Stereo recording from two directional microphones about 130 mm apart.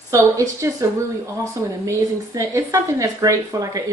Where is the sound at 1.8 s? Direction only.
25° right (ahead or behind).